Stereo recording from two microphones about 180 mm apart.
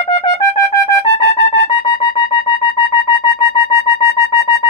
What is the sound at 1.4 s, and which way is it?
Music, 35° left (ahead or behind).